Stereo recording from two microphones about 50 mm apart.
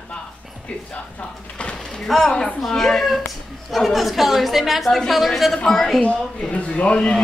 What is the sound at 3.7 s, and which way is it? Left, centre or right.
A woman's voice, centre.